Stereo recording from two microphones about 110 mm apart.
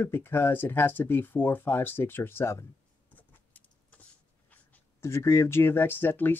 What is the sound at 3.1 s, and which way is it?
Vehicle, 15° left (ahead or behind).